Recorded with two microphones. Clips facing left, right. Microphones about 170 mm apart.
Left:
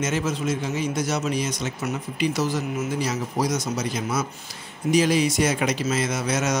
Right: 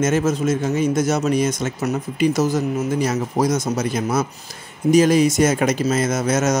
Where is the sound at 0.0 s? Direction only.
50° right (ahead or behind).